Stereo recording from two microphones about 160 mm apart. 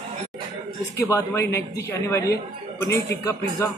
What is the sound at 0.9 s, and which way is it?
A man's voice, 20° left (ahead or behind).